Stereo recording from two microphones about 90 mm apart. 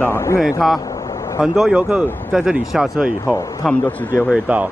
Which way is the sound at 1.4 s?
5° right (ahead or behind).